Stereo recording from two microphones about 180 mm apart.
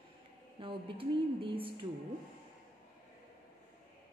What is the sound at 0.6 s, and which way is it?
Speech, 30° right (ahead or behind).